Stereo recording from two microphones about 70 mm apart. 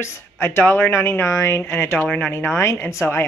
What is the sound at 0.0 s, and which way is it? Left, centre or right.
Speech, left.